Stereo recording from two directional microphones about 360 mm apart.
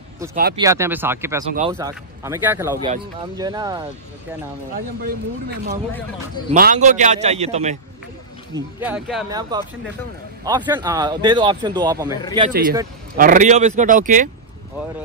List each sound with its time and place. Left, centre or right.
0.6 s speech: centre
6.5 s a man's voice: right
8.5 s speech: centre
12.4 s a man's voice: right